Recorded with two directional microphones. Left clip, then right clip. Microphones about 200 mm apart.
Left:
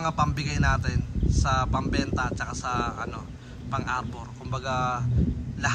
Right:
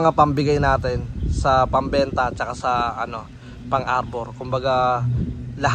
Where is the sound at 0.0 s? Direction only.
Centre (ahead or behind).